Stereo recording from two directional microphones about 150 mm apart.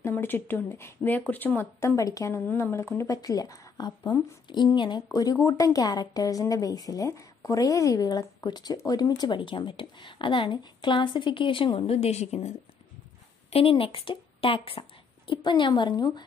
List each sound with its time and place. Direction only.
0.0 s a woman's voice: 15° left (ahead or behind); by 16.3 s 30° left (ahead or behind)